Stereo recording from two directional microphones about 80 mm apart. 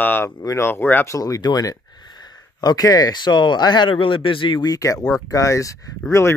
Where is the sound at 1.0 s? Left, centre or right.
Left.